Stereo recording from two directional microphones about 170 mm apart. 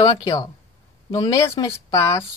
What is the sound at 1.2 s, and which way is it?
Speech, 25° left (ahead or behind).